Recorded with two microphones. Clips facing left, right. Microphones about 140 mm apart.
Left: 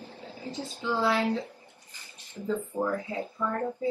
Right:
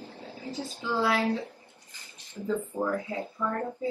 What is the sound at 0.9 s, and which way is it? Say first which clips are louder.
Speech: even; 10° right (ahead or behind).